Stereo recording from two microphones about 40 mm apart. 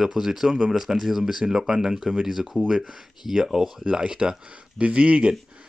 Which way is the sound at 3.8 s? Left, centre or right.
Right.